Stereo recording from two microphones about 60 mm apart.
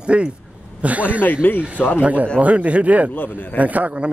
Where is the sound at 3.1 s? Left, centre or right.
Left.